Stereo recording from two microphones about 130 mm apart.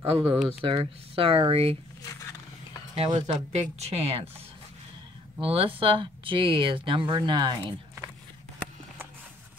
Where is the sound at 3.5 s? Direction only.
60° right (ahead or behind).